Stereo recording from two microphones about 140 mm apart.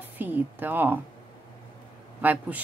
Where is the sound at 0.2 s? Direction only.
15° right (ahead or behind).